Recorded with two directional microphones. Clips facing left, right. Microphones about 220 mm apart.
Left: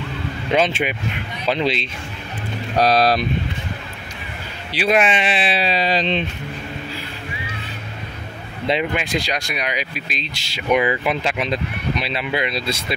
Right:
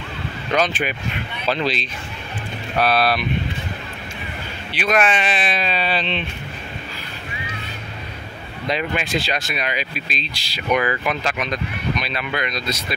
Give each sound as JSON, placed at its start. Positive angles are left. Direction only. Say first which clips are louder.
{"t": 0.5, "sound": "speech", "louder": "left 2 dB", "side_deg": 25}
{"t": 2.7, "sound": "speech", "louder": "left 3 dB", "side_deg": 35}
{"t": 4.7, "sound": "speech", "louder": "left 2 dB", "side_deg": 30}
{"t": 8.9, "sound": "speech", "louder": "even", "side_deg": 15}